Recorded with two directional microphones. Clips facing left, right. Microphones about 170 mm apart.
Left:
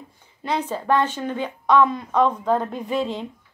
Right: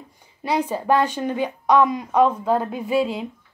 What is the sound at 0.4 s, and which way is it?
A woman's voice, 10° right (ahead or behind).